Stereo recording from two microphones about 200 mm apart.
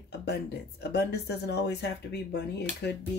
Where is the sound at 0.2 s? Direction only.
55° left (ahead or behind).